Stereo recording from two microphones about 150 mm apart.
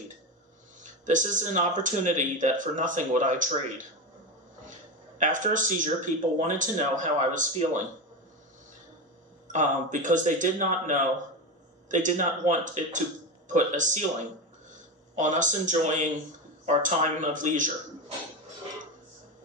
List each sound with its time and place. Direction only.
0.8 s speech: 55° right (ahead or behind)
5.2 s speech: 60° right (ahead or behind)
9.5 s speech: 55° right (ahead or behind)
15.1 s speech: 55° right (ahead or behind)